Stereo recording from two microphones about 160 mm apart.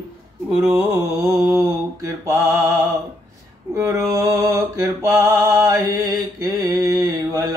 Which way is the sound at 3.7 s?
20° right (ahead or behind).